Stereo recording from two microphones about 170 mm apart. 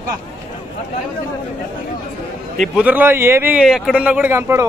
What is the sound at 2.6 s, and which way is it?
A man's voice, 10° right (ahead or behind).